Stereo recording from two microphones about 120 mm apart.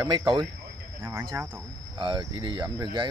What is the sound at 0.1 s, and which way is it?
Speech, 40° right (ahead or behind).